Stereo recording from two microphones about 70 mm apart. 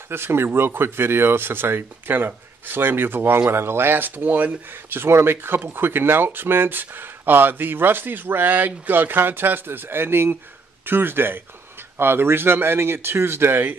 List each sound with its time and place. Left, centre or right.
0.1 s speech: right